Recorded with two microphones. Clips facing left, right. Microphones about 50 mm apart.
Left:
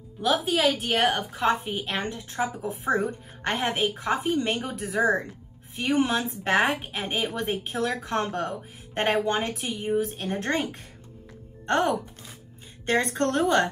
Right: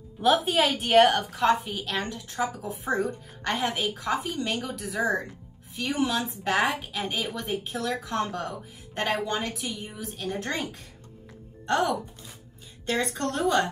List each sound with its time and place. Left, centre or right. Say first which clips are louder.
0.2 s a woman's voice: right 1 dB; centre
1.3 s a woman's voice: right 1 dB; left